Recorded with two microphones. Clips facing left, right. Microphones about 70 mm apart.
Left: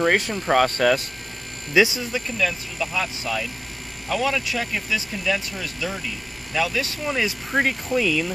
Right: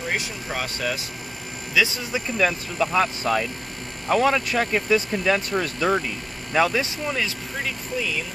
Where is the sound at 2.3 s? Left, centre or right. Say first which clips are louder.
Right 5 dB; right.